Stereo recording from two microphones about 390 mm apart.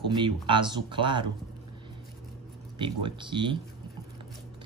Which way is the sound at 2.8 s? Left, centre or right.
Centre.